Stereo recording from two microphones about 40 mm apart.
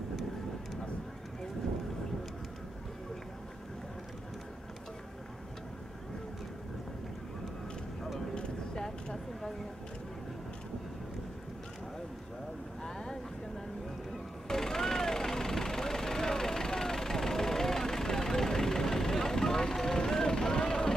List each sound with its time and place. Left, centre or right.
8.8 s a sound: centre
12.8 s boat: centre
14.5 s vehicle: centre